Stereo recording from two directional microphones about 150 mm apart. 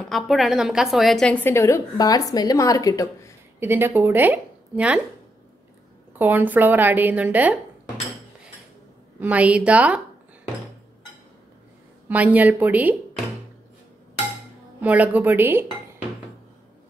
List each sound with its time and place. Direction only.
0.1 s a woman's voice: centre (ahead or behind); by 3.3 s 20° left (ahead or behind)
3.5 s a woman's voice: 15° right (ahead or behind)
6.1 s a woman's voice: 15° right (ahead or behind)
9.2 s a woman's voice: 10° right (ahead or behind)
12.1 s a woman's voice: 10° right (ahead or behind)
14.8 s a woman's voice: 10° right (ahead or behind)